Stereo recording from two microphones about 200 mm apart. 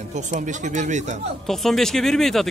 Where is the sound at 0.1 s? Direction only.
35° right (ahead or behind).